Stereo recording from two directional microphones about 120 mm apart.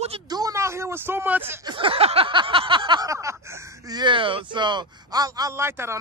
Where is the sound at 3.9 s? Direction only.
40° right (ahead or behind); by 5.9 s 20° right (ahead or behind).